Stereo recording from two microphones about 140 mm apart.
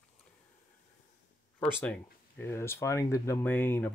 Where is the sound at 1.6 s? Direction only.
10° left (ahead or behind).